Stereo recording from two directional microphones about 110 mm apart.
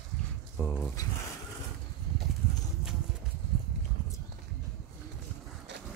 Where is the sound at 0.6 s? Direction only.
10° left (ahead or behind).